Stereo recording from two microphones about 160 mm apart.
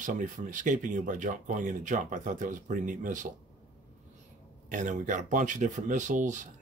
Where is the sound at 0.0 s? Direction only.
55° right (ahead or behind).